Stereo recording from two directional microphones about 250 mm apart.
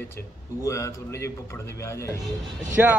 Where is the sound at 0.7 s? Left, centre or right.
Centre.